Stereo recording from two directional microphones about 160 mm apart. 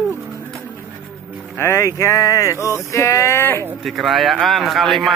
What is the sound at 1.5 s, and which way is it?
Boat, 15° left (ahead or behind).